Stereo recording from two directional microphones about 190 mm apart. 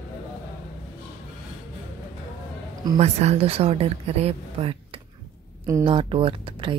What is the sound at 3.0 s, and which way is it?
Speech, 35° right (ahead or behind).